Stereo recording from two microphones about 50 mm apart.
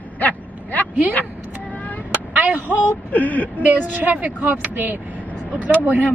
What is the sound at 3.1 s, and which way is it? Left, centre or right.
Speech, left.